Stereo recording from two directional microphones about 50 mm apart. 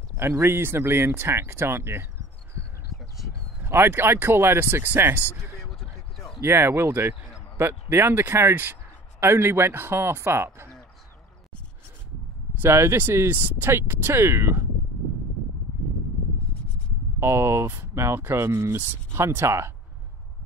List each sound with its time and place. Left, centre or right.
0.2 s speech: right
2.9 s a sound: centre
3.6 s speech: right
5.4 s a sound: centre
6.4 s speech: right
12.6 s speech: right
13.3 s speech: right
13.7 s speech: right
17.2 s speech: right